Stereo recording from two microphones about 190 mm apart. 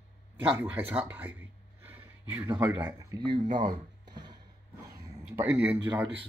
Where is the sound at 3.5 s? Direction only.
25° right (ahead or behind).